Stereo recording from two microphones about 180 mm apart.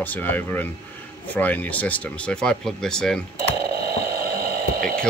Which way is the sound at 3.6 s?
55° right (ahead or behind).